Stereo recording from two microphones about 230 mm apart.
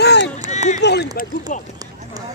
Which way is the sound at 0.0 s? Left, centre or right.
Left.